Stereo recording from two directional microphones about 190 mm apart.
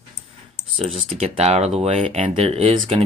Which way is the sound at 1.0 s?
30° right (ahead or behind).